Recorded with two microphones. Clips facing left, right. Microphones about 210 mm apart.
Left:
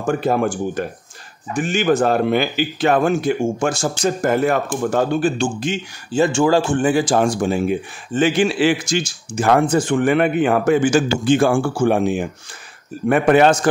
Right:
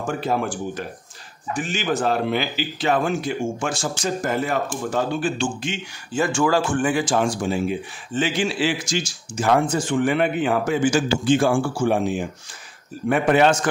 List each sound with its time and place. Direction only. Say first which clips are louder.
0.0 s a man's voice: left 5 dB; 50° left (ahead or behind)
6.2 s a man's voice: left 4 dB; 25° left (ahead or behind); by 13.5 s 55° left (ahead or behind)